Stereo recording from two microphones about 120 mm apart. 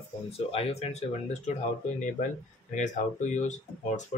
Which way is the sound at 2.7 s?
90° left.